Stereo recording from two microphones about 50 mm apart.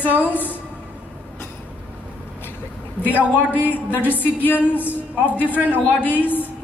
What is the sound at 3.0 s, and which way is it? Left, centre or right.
A woman's voice, left.